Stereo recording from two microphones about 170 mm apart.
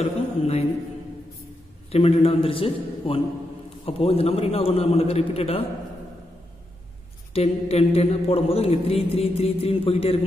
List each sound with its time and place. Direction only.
0.0 s a sound: 40° left (ahead or behind)
1.9 s a man's voice: 35° left (ahead or behind)
7.3 s a man's voice: 35° left (ahead or behind)